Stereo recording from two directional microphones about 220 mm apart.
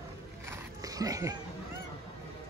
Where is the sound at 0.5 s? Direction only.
15° right (ahead or behind).